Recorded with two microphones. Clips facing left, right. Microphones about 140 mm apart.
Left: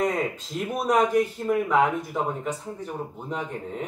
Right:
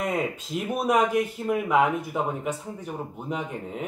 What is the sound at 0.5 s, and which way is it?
Speech, 10° right (ahead or behind).